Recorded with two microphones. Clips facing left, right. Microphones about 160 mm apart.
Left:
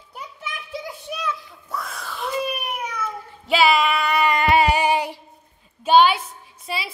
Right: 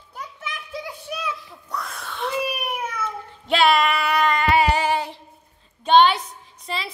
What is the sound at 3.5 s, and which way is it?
Speech, centre (ahead or behind).